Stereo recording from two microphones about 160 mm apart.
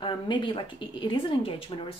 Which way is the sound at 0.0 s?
30° left (ahead or behind).